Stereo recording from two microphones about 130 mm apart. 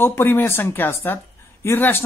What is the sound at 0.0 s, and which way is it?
A woman's voice, 15° left (ahead or behind).